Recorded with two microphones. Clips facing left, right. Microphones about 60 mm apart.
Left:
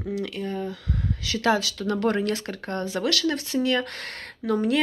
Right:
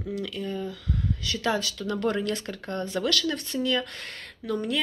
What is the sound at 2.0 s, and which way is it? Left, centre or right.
A woman's voice, left.